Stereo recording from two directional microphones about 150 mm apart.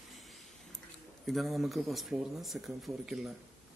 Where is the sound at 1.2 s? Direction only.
Centre (ahead or behind).